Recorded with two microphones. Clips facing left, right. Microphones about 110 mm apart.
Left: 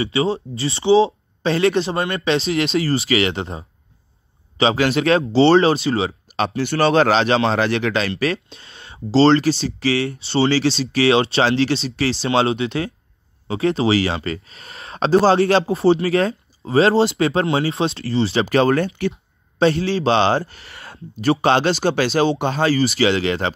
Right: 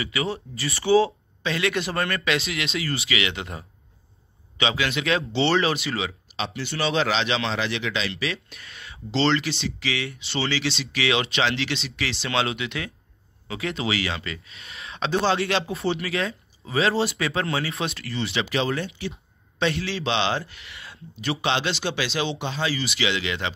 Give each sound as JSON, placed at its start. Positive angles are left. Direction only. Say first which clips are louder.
{"t": 0.0, "sound": "speech", "louder": "left 8 dB", "side_deg": 30}
{"t": 6.3, "sound": "speech", "louder": "left 11 dB", "side_deg": 50}
{"t": 8.5, "sound": "speech", "louder": "left 2 dB", "side_deg": 30}
{"t": 19.6, "sound": "speech", "louder": "left 8 dB", "side_deg": 35}